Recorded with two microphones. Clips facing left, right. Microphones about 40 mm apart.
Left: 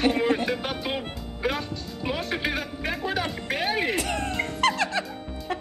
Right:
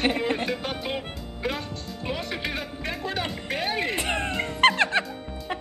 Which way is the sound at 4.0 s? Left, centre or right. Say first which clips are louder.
Even; right.